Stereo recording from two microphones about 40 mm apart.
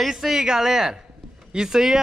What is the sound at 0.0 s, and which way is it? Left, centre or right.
Speech, centre.